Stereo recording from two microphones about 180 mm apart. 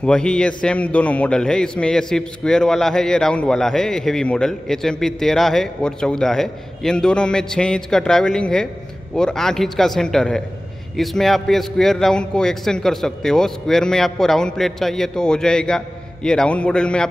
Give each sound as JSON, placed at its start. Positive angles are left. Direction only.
{"t": 0.0, "sound": "a man's voice", "side_deg": 5}